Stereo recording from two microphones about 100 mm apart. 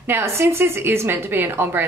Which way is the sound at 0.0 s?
25° right (ahead or behind).